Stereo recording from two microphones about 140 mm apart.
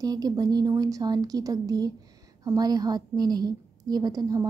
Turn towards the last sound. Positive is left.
turn(degrees=-25)  # may be behind; listen again after turning